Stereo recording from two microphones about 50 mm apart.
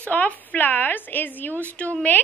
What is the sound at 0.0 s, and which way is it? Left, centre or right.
A woman's voice, left.